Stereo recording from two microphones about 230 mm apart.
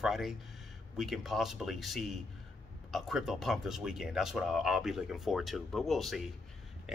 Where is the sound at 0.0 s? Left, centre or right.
Centre.